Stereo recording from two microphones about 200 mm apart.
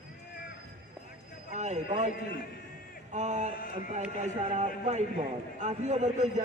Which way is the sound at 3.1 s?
35° right (ahead or behind).